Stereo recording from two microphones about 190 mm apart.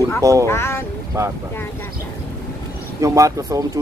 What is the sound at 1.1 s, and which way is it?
Speech, 15° right (ahead or behind).